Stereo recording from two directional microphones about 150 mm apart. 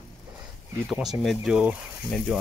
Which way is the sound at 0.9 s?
Centre (ahead or behind).